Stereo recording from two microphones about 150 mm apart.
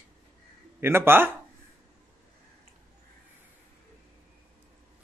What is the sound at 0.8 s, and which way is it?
Speech, 15° right (ahead or behind).